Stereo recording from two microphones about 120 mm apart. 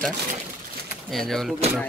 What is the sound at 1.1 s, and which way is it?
Speech, 5° left (ahead or behind).